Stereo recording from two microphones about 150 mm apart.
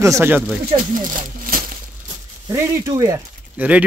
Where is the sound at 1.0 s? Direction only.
65° right (ahead or behind).